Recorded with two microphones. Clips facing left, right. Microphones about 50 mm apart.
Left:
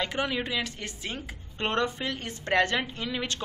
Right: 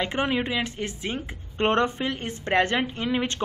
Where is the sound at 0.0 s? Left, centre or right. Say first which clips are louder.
Right 4 dB; right.